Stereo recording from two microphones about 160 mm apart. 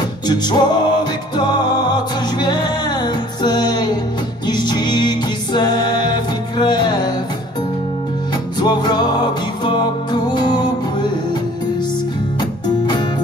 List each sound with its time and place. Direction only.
0.3 s music: 25° left (ahead or behind)
8.5 s music: 25° left (ahead or behind)
12.6 s music: 25° left (ahead or behind)